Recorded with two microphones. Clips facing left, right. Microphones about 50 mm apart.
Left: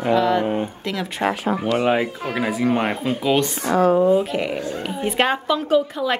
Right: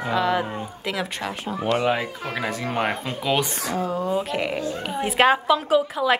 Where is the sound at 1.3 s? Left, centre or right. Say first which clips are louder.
Left 8 dB; left.